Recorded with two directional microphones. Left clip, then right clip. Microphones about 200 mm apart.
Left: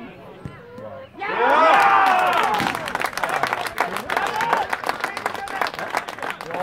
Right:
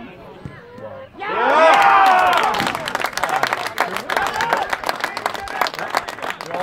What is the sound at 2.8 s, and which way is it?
Applause, 40° right (ahead or behind).